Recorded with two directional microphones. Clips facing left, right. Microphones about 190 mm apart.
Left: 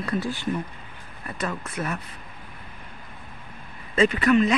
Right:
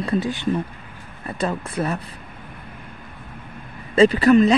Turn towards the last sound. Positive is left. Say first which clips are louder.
# right 6 dB
turn(degrees=-35)  # may be behind; listen again after turning